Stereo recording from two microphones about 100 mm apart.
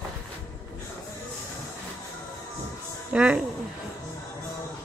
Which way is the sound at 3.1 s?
10° right (ahead or behind).